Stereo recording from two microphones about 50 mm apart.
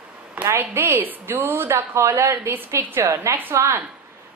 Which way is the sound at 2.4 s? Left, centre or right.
Right.